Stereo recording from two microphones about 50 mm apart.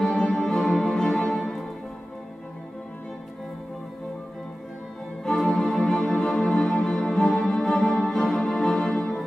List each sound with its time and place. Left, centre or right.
0.0 s music: centre
5.2 s music: centre